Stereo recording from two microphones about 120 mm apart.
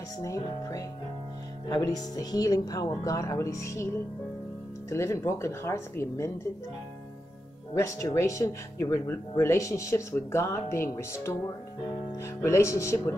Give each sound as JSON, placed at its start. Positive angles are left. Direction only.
{"t": 0.2, "sound": "speech", "side_deg": 30}
{"t": 7.7, "sound": "speech", "side_deg": 25}